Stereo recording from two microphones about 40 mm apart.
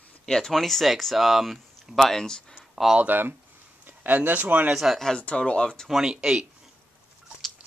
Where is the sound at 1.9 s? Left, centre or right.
Centre.